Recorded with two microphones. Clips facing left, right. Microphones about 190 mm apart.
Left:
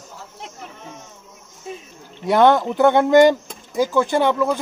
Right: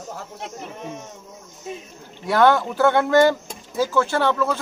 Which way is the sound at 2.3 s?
20° left (ahead or behind).